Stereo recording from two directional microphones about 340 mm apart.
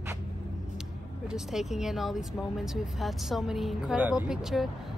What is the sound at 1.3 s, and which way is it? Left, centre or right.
Speech, centre.